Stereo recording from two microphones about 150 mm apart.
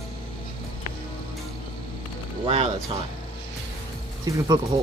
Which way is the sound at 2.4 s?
40° right (ahead or behind).